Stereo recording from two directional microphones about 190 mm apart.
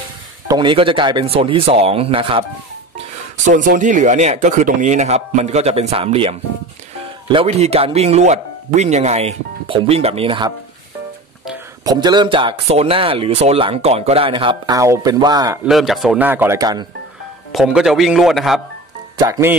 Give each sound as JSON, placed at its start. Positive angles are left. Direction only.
{"t": 0.5, "sound": "speech", "side_deg": -25}
{"t": 3.4, "sound": "speech", "side_deg": -45}
{"t": 7.3, "sound": "speech", "side_deg": -30}
{"t": 11.8, "sound": "speech", "side_deg": -20}
{"t": 15.6, "sound": "speech", "side_deg": 0}
{"t": 17.5, "sound": "speech", "side_deg": 0}
{"t": 19.1, "sound": "speech", "side_deg": -20}